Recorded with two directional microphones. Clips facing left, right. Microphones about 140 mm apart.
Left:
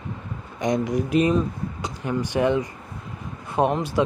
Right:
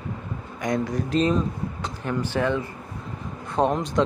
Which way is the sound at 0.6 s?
20° left (ahead or behind).